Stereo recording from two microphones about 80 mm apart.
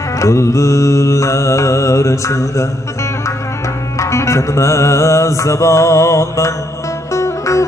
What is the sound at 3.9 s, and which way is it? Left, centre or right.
Music, left.